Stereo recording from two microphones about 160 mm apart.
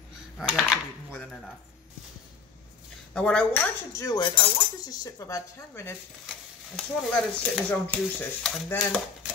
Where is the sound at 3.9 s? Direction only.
20° left (ahead or behind).